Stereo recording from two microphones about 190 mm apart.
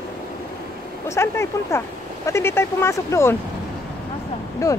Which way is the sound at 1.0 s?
15° left (ahead or behind).